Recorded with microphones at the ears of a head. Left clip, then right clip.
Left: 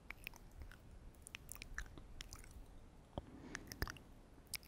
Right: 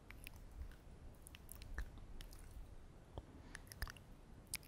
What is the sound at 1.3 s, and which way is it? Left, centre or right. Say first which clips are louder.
Chewing: left 6 dB; left.